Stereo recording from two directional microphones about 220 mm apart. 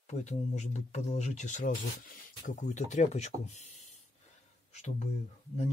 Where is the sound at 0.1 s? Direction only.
30° left (ahead or behind).